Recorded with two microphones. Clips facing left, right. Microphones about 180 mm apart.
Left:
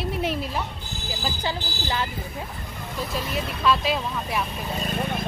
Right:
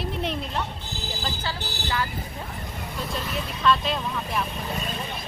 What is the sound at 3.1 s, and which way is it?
Speech, 5° left (ahead or behind).